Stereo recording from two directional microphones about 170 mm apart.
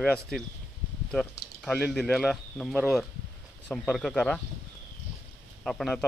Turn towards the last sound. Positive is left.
turn(degrees=0)  # may be behind; listen again after turning